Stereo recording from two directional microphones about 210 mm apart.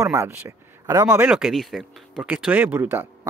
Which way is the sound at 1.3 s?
Centre (ahead or behind).